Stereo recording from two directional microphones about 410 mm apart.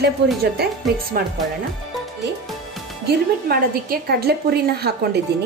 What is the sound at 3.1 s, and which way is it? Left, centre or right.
A woman's voice, right.